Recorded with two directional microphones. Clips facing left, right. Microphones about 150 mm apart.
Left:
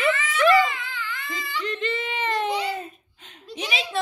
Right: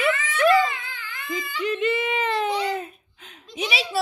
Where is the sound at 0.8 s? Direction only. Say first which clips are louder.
Left 3 dB; 50° right (ahead or behind).